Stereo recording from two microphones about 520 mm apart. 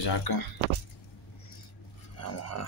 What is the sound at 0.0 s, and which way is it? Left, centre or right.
Speech, left.